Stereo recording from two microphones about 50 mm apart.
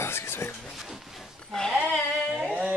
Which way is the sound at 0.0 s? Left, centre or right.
Left.